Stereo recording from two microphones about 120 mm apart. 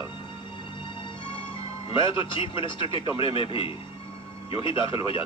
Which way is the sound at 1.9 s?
45° left (ahead or behind).